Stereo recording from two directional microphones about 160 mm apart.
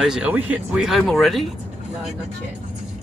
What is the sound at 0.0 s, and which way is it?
Speech, 5° right (ahead or behind).